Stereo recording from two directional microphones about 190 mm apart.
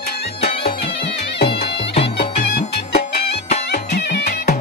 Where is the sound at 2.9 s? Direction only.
35° left (ahead or behind).